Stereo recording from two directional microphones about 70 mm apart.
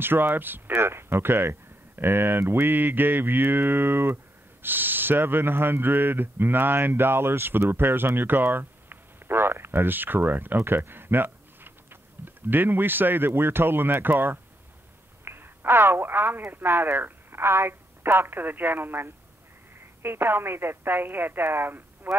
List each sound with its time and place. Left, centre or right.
0.0 s speech: right